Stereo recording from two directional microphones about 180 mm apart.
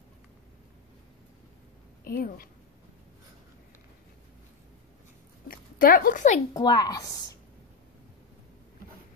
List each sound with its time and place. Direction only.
2.0 s a woman's voice: 55° left (ahead or behind)
5.5 s speech: 55° left (ahead or behind)
6.5 s a woman's voice: 20° left (ahead or behind)